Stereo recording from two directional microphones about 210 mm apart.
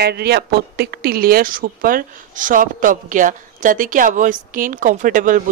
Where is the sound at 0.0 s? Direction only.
50° right (ahead or behind).